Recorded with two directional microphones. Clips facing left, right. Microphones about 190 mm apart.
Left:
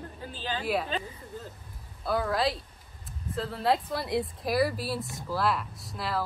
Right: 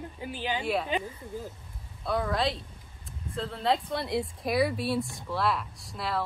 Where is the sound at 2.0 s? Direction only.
Centre (ahead or behind).